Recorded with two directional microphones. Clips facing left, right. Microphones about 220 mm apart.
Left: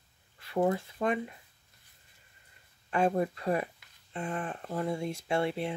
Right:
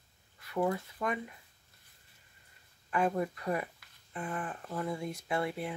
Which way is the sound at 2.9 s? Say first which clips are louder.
Left 3 dB; 25° left (ahead or behind).